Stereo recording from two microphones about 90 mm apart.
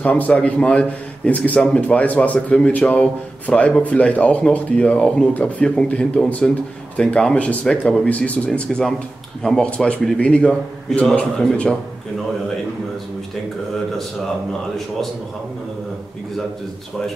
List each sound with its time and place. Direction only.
0.0 s a man's voice: 15° left (ahead or behind)